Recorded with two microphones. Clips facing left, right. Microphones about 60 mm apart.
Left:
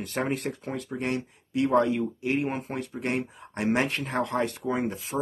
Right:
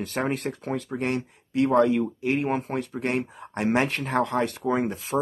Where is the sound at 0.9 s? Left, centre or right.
Right.